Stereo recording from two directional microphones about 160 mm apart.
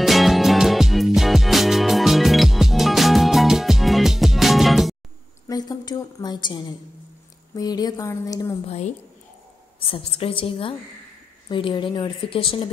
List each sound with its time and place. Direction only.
0.0 s music: centre (ahead or behind)
5.5 s a sound: 25° left (ahead or behind)
7.5 s speech: 25° left (ahead or behind)
8.6 s a woman's voice: 45° left (ahead or behind)